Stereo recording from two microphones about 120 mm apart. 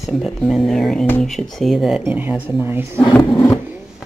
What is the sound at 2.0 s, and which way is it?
Speech, 15° right (ahead or behind).